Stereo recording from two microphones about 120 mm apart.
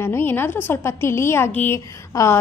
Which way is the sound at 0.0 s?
20° left (ahead or behind).